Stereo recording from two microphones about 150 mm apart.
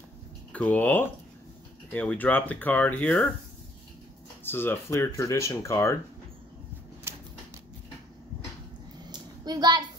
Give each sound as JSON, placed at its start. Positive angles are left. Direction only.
{"t": 0.5, "sound": "speech", "side_deg": 10}
{"t": 4.5, "sound": "speech", "side_deg": 15}
{"t": 7.1, "sound": "typewriter", "side_deg": -15}
{"t": 9.1, "sound": "a sound", "side_deg": -25}